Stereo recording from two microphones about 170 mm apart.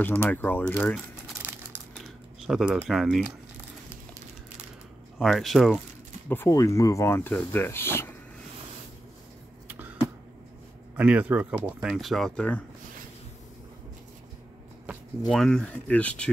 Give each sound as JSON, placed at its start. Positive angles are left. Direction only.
{"t": 0.0, "sound": "speech", "side_deg": 10}
{"t": 2.0, "sound": "typing", "side_deg": 0}
{"t": 5.2, "sound": "speech", "side_deg": 0}
{"t": 6.2, "sound": "speech", "side_deg": 15}
{"t": 9.7, "sound": "a sound", "side_deg": -10}
{"t": 11.0, "sound": "speech", "side_deg": -10}
{"t": 15.2, "sound": "speech", "side_deg": 0}